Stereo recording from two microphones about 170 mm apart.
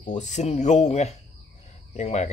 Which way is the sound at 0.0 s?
45° left (ahead or behind).